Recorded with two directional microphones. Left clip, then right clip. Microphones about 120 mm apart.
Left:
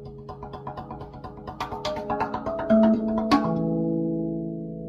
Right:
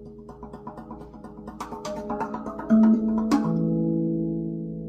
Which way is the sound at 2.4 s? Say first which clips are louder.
Left 2 dB; 15° left (ahead or behind).